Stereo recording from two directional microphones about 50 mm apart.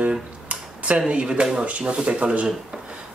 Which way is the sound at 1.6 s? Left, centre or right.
Right.